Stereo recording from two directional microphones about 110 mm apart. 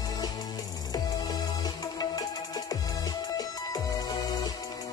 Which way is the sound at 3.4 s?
35° left (ahead or behind).